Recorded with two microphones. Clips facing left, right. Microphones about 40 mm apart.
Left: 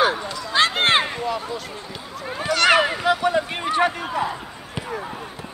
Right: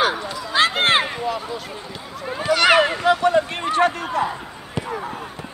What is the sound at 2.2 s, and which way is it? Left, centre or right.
Speech, centre.